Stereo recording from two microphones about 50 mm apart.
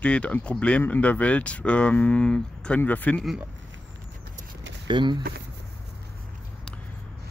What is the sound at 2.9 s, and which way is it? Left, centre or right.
Speech, left.